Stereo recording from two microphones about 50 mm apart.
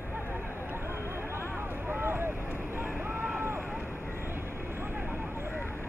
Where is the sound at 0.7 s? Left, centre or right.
Right.